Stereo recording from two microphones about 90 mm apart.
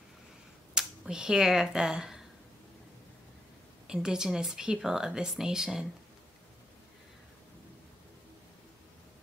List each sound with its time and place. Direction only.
0.7 s speech: 5° right (ahead or behind)
3.8 s a woman's voice: 10° right (ahead or behind)